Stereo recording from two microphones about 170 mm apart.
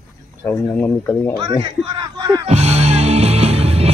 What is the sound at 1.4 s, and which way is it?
Speech, 25° right (ahead or behind).